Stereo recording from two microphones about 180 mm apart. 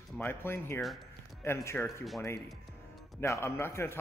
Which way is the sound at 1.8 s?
Centre (ahead or behind).